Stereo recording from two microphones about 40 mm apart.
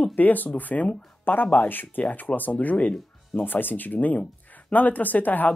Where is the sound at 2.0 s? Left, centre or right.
Left.